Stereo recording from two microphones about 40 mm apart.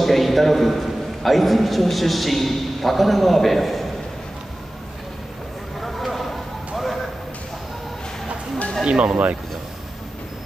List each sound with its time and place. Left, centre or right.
0.0 s a man's voice: centre
5.8 s a sound: centre
8.8 s speech: right